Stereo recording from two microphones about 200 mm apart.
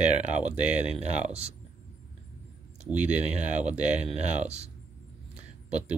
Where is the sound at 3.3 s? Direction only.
35° right (ahead or behind).